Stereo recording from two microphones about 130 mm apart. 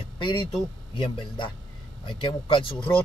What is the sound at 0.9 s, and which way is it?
A man's voice, 40° left (ahead or behind).